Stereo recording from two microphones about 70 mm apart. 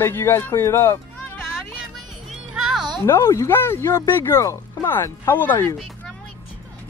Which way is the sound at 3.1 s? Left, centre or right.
Left.